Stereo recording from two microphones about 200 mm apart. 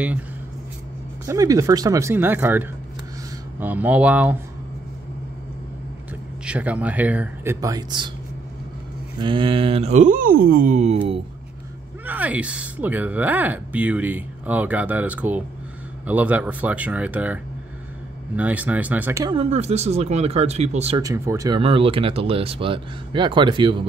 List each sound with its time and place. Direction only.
1.2 s speech: 15° right (ahead or behind)
6.4 s speech: 5° right (ahead or behind)
9.2 s speech: 25° right (ahead or behind)
12.1 s speech: 5° right (ahead or behind)
19.3 s speech: 30° right (ahead or behind)
21.0 s speech: 15° right (ahead or behind)
21.5 s speech: 30° right (ahead or behind)